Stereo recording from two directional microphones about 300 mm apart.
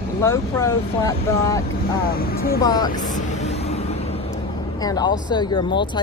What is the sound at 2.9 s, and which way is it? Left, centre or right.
Vehicle, left.